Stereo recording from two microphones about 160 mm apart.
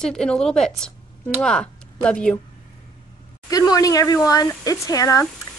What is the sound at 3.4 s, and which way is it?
Speech, 25° left (ahead or behind).